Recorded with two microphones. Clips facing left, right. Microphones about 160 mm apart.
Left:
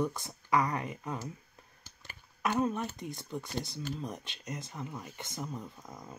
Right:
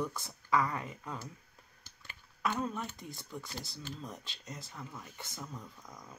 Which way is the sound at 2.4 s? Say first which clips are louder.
Left 5 dB; 20° left (ahead or behind).